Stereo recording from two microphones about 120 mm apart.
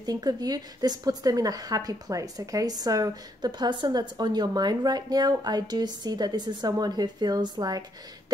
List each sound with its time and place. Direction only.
0.0 s a woman's voice: 35° right (ahead or behind)